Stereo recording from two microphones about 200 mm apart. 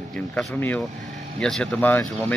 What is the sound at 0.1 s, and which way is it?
Speech, 5° left (ahead or behind).